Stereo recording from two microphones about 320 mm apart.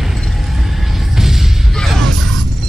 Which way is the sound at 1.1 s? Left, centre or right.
Centre.